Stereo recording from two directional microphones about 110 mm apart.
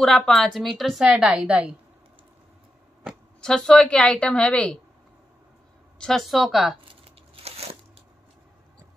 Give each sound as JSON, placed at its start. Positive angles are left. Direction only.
{"t": 0.0, "sound": "a woman's voice", "side_deg": 5}
{"t": 3.3, "sound": "a woman's voice", "side_deg": 5}
{"t": 5.9, "sound": "a woman's voice", "side_deg": 5}
{"t": 7.1, "sound": "a sound", "side_deg": -70}